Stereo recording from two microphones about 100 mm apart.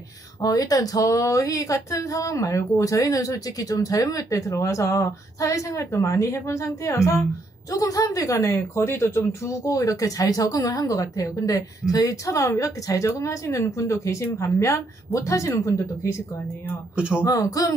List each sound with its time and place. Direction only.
0.4 s speech: 35° left (ahead or behind)
16.9 s speech: 10° right (ahead or behind)
17.2 s speech: 35° left (ahead or behind)